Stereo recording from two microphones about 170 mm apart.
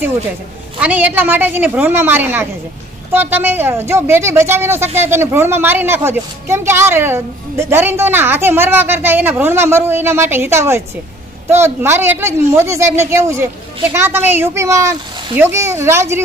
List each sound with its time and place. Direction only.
0.7 s a woman's voice: 10° right (ahead or behind)